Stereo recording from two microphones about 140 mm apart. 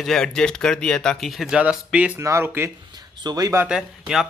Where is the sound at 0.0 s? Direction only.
5° left (ahead or behind); by 3.6 s 25° right (ahead or behind).